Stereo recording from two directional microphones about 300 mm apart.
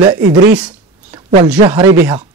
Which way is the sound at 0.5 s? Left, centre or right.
Centre.